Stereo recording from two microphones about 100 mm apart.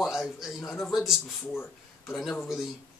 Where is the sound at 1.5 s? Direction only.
25° left (ahead or behind).